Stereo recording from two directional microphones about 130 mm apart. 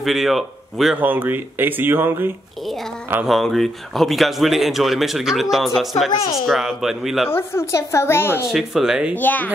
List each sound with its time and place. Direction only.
0.0 s a man's voice: centre (ahead or behind)
0.9 s speech: 15° right (ahead or behind)
2.6 s speech: centre (ahead or behind)
7.2 s a woman's voice: 20° left (ahead or behind)
8.5 s speech: 5° right (ahead or behind)
9.1 s speech: 15° left (ahead or behind)